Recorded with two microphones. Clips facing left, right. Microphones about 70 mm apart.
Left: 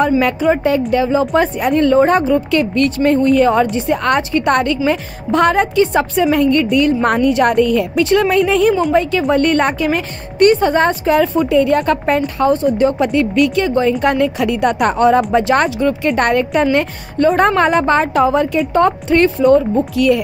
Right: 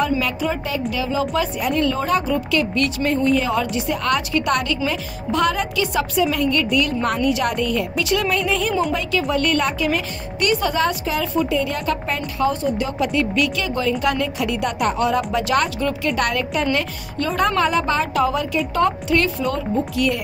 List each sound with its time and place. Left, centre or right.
0.2 s a woman's voice: left
2.6 s a woman's voice: left
9.3 s a woman's voice: left
16.1 s a woman's voice: left
17.6 s a woman's voice: left